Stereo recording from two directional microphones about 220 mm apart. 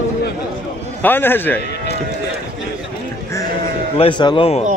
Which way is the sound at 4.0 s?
20° left (ahead or behind).